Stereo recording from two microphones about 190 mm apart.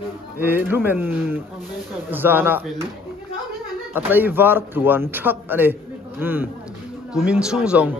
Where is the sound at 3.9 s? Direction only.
10° right (ahead or behind).